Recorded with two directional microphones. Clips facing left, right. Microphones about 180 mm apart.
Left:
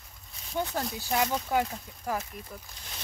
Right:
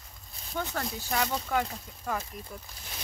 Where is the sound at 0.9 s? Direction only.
10° left (ahead or behind).